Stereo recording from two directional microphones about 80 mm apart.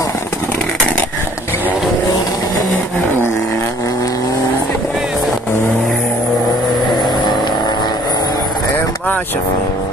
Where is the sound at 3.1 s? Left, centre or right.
Left.